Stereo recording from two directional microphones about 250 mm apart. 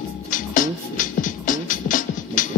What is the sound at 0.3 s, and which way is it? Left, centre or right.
Music, left.